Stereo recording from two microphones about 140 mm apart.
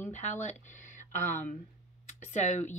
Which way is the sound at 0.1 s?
60° left (ahead or behind).